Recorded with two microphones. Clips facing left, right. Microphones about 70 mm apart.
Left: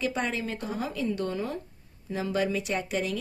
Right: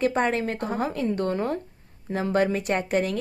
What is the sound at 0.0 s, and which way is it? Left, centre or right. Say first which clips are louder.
Speech: right 7 dB; right.